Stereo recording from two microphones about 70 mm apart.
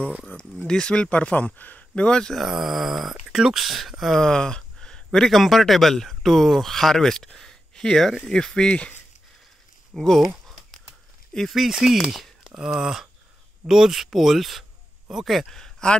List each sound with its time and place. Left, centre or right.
0.3 s speech: left
0.7 s speech: centre
2.4 s speech: centre
9.9 s speech: centre
10.5 s a sound: centre
13.7 s speech: centre